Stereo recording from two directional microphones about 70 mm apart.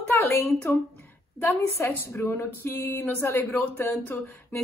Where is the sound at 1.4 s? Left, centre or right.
Left.